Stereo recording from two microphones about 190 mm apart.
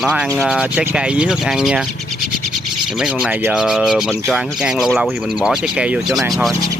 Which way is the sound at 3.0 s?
5° right (ahead or behind).